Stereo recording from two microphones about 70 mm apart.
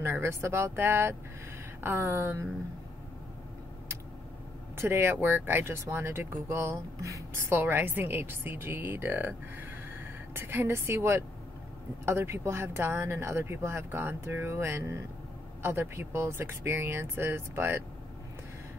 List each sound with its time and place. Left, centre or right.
0.0 s speech: right
4.7 s speech: right
7.4 s speech: right